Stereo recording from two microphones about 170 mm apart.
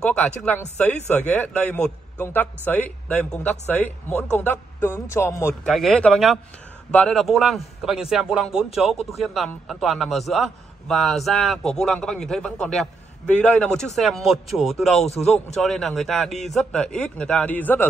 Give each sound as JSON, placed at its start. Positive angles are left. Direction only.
{"t": 0.0, "sound": "a man's voice", "side_deg": 5}
{"t": 5.7, "sound": "a man's voice", "side_deg": 0}
{"t": 15.0, "sound": "a man's voice", "side_deg": 40}
{"t": 15.5, "sound": "a man's voice", "side_deg": 0}